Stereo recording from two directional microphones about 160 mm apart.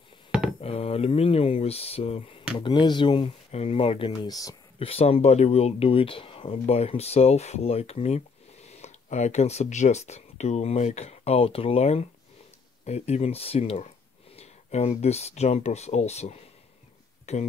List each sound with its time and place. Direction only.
0.6 s speech: 40° left (ahead or behind); by 4.6 s 20° left (ahead or behind)
4.7 s speech: 40° left (ahead or behind)